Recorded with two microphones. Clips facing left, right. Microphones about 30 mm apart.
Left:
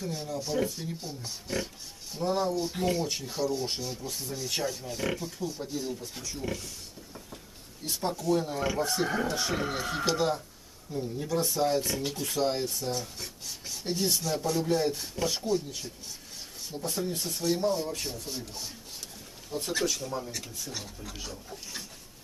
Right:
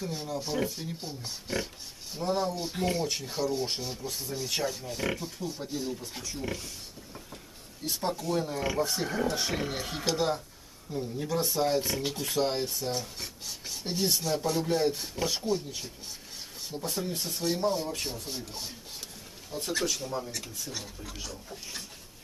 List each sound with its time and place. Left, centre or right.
0.0 s speech: centre
7.8 s speech: centre
19.5 s speech: centre
20.0 s speech: centre
20.2 s speech: centre